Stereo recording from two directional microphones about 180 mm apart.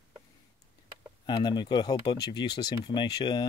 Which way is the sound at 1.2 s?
25° left (ahead or behind).